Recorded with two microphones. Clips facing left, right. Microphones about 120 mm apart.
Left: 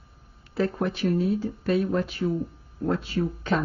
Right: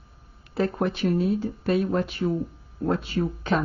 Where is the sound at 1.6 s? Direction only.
55° right (ahead or behind).